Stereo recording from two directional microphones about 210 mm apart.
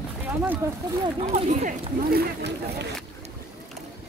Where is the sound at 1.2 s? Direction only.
35° right (ahead or behind).